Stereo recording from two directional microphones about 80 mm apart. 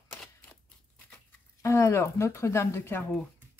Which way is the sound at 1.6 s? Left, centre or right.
Left.